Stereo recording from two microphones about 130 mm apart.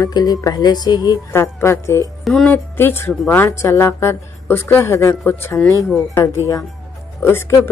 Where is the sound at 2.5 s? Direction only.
15° left (ahead or behind).